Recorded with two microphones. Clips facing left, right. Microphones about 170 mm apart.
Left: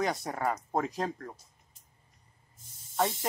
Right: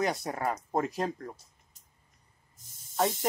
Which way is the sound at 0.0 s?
10° right (ahead or behind).